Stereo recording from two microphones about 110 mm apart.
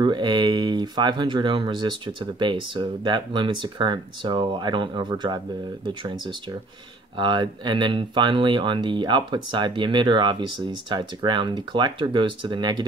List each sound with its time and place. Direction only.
0.0 s speech: 40° right (ahead or behind)